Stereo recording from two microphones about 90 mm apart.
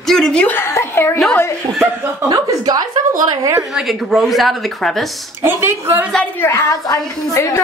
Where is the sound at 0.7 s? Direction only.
30° left (ahead or behind).